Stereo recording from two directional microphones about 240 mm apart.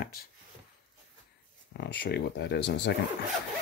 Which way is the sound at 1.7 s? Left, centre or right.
Left.